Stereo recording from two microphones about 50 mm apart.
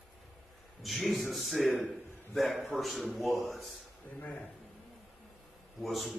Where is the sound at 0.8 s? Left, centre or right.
Centre.